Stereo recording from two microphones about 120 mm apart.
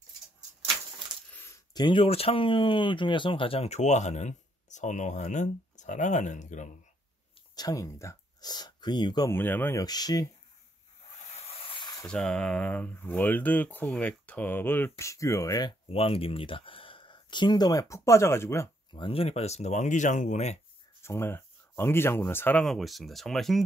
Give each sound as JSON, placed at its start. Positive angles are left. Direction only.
{"t": 1.3, "sound": "coin", "side_deg": 20}
{"t": 1.7, "sound": "speech", "side_deg": 40}
{"t": 7.5, "sound": "speech", "side_deg": 30}
{"t": 9.3, "sound": "speech", "side_deg": 15}
{"t": 9.8, "sound": "speech", "side_deg": 35}
{"t": 12.1, "sound": "speech", "side_deg": 5}
{"t": 15.9, "sound": "speech", "side_deg": 50}
{"t": 18.9, "sound": "speech", "side_deg": 45}
{"t": 21.0, "sound": "speech", "side_deg": 20}
{"t": 22.6, "sound": "speech", "side_deg": 0}